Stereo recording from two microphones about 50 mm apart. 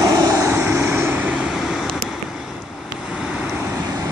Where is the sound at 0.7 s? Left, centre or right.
Right.